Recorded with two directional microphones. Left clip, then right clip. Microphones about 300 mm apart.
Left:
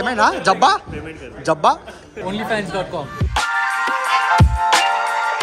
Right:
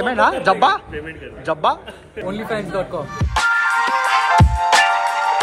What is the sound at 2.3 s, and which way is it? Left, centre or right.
Speech, left.